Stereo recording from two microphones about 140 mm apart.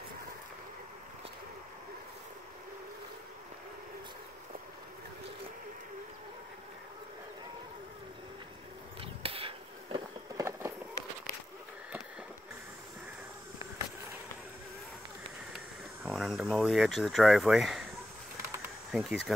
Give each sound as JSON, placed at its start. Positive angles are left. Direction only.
{"t": 9.0, "sound": "chop", "side_deg": -40}
{"t": 10.3, "sound": "run", "side_deg": -20}
{"t": 16.1, "sound": "speech", "side_deg": 0}
{"t": 18.4, "sound": "a sound", "side_deg": -15}
{"t": 18.9, "sound": "speech", "side_deg": 0}